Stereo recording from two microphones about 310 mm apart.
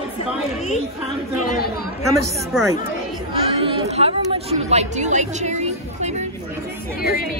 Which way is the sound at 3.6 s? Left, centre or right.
Centre.